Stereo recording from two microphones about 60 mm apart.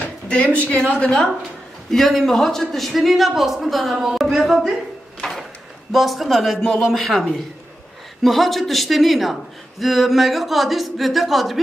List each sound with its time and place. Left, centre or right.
0.3 s a woman's voice: left; by 4.7 s centre
5.2 s a sound: centre
5.9 s speech: centre